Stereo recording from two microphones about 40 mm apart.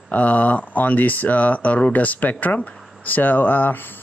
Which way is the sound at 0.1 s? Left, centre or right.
Left.